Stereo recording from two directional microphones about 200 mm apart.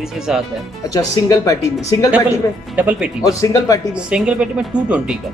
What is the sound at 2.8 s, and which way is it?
Speech, 5° right (ahead or behind).